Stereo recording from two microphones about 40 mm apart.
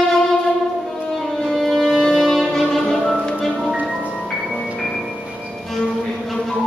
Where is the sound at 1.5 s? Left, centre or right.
Centre.